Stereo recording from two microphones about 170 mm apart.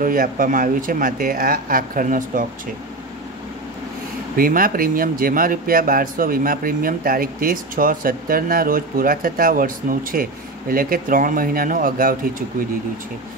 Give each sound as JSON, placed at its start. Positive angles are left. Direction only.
{"t": 0.0, "sound": "speech", "side_deg": -55}
{"t": 4.4, "sound": "speech", "side_deg": -55}